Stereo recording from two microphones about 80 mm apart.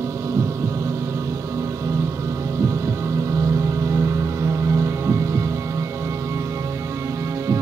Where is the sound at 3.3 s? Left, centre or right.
Right.